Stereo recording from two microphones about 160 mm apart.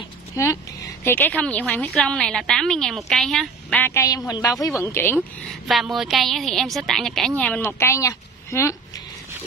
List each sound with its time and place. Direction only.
0.4 s a woman's voice: 20° left (ahead or behind)
5.5 s a woman's voice: centre (ahead or behind); by 8.7 s 15° left (ahead or behind)